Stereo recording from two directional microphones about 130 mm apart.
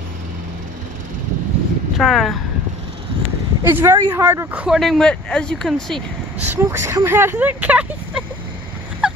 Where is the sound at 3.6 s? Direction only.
15° right (ahead or behind).